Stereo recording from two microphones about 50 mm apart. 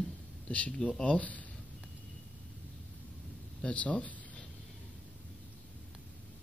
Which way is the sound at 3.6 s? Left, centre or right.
Left.